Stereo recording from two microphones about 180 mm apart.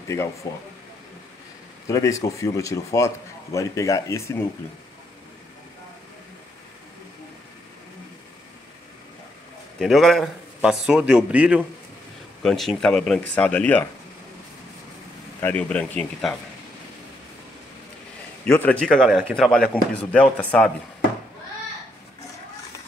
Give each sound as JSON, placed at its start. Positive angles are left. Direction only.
{"t": 0.1, "sound": "speech", "side_deg": 15}
{"t": 1.9, "sound": "speech", "side_deg": 20}
{"t": 9.8, "sound": "speech", "side_deg": 0}
{"t": 15.4, "sound": "speech", "side_deg": 10}
{"t": 18.4, "sound": "speech", "side_deg": 10}